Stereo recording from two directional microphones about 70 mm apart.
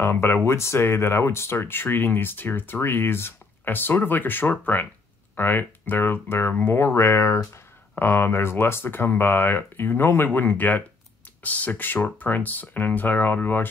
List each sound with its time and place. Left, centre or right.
0.0 s speech: left